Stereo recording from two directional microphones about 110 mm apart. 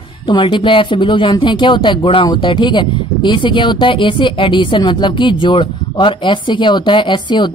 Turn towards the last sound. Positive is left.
turn(degrees=45)  # may be behind; listen again after turning